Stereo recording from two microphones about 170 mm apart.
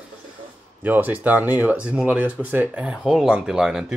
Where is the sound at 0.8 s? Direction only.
10° right (ahead or behind).